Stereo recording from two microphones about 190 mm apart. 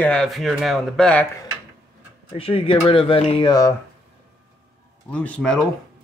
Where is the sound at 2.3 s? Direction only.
30° left (ahead or behind).